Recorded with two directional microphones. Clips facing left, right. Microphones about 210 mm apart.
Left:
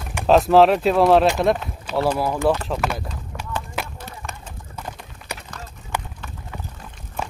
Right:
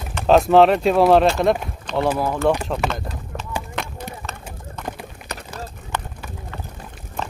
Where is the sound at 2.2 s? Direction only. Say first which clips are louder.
Right 1 dB; 5° left (ahead or behind).